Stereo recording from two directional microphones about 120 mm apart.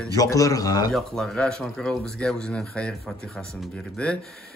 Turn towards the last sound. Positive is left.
turn(degrees=10)  # may be behind; listen again after turning